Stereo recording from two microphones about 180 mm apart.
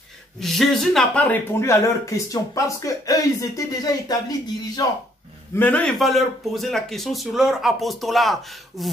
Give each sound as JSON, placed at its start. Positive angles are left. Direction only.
{"t": 0.4, "sound": "speech", "side_deg": 0}
{"t": 5.5, "sound": "a man's voice", "side_deg": 10}